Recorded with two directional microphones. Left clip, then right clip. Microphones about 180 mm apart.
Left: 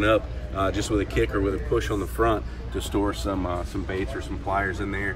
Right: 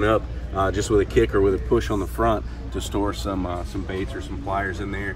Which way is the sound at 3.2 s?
Centre (ahead or behind).